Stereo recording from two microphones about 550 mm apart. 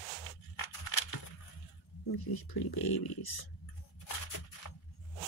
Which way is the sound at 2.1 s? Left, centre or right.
Left.